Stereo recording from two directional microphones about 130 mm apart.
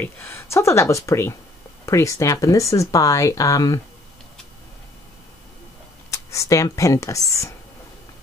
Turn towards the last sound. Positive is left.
turn(degrees=25)  # may be behind; listen again after turning